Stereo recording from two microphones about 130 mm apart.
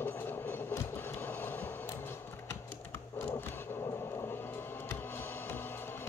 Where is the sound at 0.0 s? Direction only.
15° left (ahead or behind).